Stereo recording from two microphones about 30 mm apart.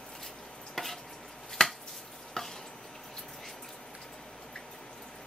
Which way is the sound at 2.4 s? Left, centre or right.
Centre.